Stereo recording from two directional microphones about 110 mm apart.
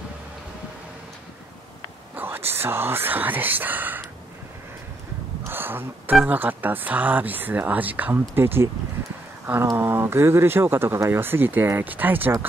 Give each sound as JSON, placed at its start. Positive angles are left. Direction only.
{"t": 2.1, "sound": "speech", "side_deg": -20}
{"t": 5.5, "sound": "a sound", "side_deg": -20}
{"t": 6.2, "sound": "speech", "side_deg": -15}
{"t": 9.8, "sound": "speech", "side_deg": -20}